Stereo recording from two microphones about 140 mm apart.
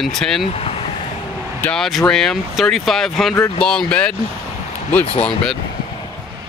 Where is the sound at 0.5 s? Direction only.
45° left (ahead or behind).